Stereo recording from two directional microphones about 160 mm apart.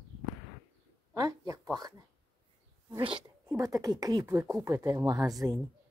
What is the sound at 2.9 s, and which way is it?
Speech, 35° right (ahead or behind).